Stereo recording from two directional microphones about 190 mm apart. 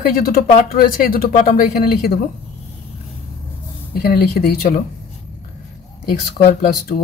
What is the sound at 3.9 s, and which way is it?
Speech, 55° left (ahead or behind).